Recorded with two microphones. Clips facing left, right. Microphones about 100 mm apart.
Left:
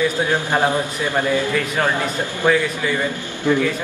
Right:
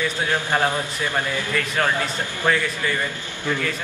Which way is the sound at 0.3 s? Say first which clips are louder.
Left 3 dB; 15° left (ahead or behind).